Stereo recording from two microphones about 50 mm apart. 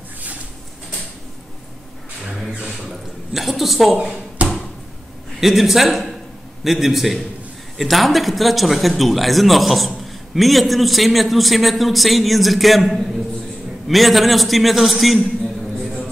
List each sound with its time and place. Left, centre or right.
2.8 s speech: centre
4.4 s a sound: right
5.4 s speech: centre